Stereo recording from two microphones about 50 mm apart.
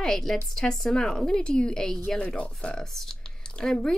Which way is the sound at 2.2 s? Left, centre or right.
Left.